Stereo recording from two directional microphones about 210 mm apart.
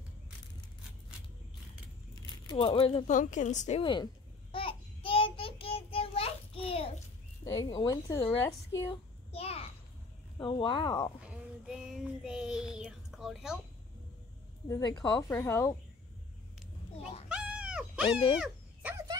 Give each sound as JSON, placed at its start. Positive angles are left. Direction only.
{"t": 2.4, "sound": "a sound", "side_deg": 25}
{"t": 7.6, "sound": "a woman's voice", "side_deg": 20}
{"t": 9.3, "sound": "a sound", "side_deg": 30}
{"t": 10.4, "sound": "speech", "side_deg": 25}
{"t": 11.2, "sound": "child singing", "side_deg": -5}
{"t": 14.7, "sound": "a woman's voice", "side_deg": 20}
{"t": 17.3, "sound": "dog", "side_deg": -5}